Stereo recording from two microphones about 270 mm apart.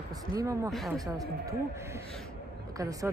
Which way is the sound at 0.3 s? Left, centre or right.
Centre.